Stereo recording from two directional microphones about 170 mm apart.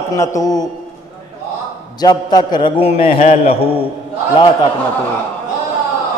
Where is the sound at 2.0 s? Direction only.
25° left (ahead or behind).